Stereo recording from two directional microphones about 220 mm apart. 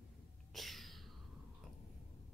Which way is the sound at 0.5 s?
Centre (ahead or behind).